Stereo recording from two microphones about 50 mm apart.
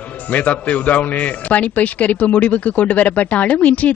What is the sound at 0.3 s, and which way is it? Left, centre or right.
A man's voice, left.